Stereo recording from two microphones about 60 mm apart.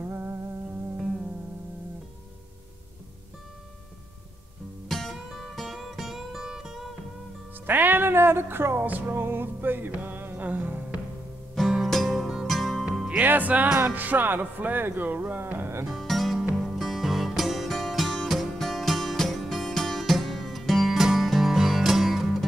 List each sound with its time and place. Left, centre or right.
0.1 s music: right
0.9 s music: centre
4.8 s music: centre
7.6 s speech: right
9.1 s music: right
11.6 s music: centre
13.1 s music: right
13.7 s speech: right
16.0 s music: centre